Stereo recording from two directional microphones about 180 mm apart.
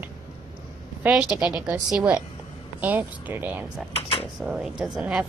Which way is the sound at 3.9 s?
30° left (ahead or behind).